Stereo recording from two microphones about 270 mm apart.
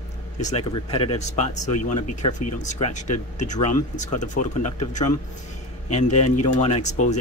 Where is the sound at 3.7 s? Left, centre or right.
Left.